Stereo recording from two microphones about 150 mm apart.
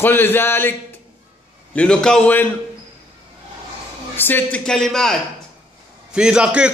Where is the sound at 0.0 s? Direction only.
15° left (ahead or behind).